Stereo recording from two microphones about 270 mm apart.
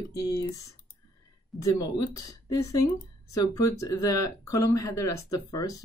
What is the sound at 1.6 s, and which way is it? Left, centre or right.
Speech, centre.